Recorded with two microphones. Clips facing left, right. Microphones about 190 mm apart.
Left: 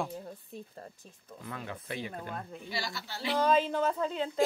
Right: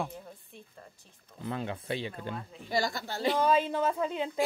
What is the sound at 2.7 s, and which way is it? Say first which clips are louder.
Speech: right 9 dB; 45° right (ahead or behind).